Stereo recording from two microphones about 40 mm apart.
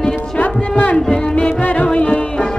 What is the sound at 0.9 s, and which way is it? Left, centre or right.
Music, left.